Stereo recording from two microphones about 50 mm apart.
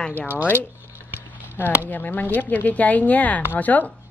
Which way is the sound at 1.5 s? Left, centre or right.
Left.